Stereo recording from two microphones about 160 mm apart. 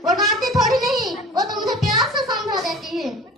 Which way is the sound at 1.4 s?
Centre (ahead or behind).